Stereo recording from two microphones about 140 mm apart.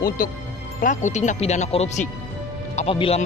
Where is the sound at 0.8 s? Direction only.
60° left (ahead or behind).